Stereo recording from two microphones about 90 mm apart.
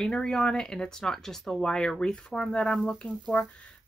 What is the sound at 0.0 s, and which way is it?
Speech, 10° left (ahead or behind).